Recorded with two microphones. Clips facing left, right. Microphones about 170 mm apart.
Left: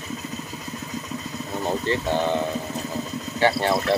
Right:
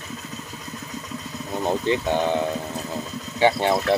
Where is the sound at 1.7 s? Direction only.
15° right (ahead or behind).